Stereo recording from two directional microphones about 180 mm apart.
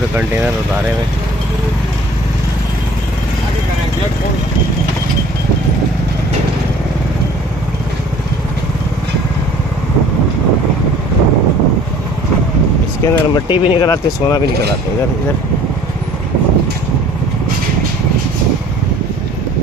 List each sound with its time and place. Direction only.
13.0 s speech: 25° left (ahead or behind)